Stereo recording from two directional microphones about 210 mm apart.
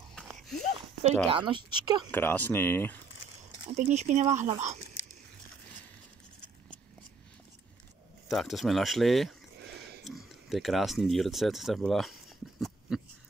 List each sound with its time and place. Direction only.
0.1 s a sound: centre (ahead or behind)
1.2 s speech: 25° right (ahead or behind)
2.0 s speech: 10° left (ahead or behind)
3.7 s speech: 35° right (ahead or behind)
5.0 s biting: 65° left (ahead or behind)
8.3 s speech: centre (ahead or behind)